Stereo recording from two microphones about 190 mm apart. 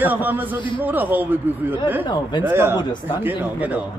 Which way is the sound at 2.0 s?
25° left (ahead or behind).